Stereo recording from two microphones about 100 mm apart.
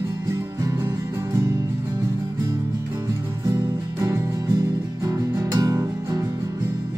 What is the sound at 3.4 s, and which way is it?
Music, 30° right (ahead or behind).